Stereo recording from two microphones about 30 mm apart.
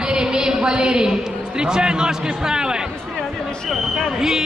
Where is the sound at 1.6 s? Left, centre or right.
Right.